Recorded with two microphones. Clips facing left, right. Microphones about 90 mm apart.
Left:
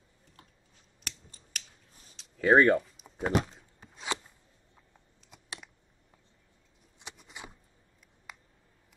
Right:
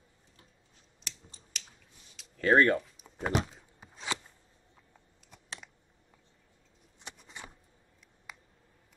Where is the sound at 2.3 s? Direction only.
10° left (ahead or behind).